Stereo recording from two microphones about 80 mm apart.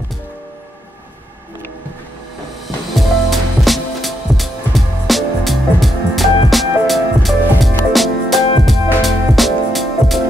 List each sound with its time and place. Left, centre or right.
3.0 s music: centre